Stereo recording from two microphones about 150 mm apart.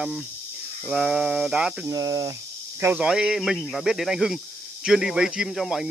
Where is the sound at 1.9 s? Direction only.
20° right (ahead or behind).